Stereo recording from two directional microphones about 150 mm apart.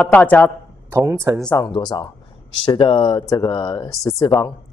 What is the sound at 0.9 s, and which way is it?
Speech, 15° right (ahead or behind).